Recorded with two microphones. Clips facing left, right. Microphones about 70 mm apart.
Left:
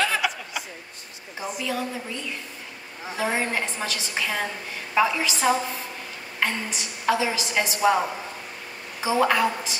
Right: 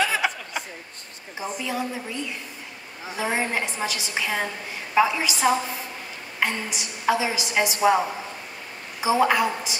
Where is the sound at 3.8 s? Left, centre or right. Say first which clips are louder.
Right 1 dB; centre.